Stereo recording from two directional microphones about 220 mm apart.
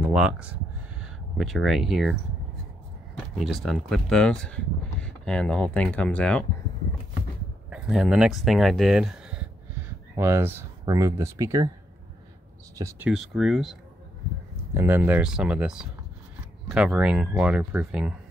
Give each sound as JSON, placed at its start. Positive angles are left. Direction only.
{"t": 0.0, "sound": "speech", "side_deg": -5}
{"t": 3.3, "sound": "speech", "side_deg": 0}
{"t": 7.7, "sound": "speech", "side_deg": 0}
{"t": 12.7, "sound": "speech", "side_deg": -15}
{"t": 13.3, "sound": "speech", "side_deg": 0}